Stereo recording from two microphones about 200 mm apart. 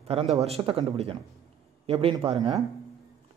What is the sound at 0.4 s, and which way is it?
A man's voice, 30° right (ahead or behind).